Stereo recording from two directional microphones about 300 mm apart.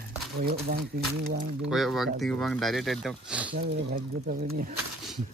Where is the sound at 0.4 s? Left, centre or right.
Right.